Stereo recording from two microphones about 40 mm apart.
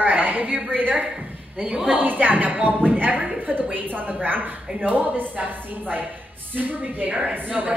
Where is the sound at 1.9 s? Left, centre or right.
Right.